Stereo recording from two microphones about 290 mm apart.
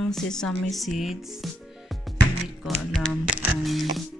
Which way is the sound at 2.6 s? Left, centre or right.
Centre.